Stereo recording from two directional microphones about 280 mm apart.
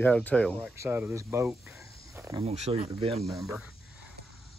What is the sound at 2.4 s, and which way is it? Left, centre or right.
Speech, right.